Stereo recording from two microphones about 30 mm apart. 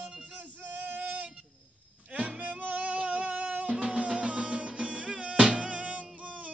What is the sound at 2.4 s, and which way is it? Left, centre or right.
Music, right.